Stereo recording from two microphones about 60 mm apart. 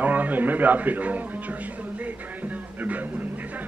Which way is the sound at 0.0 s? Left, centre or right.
Right.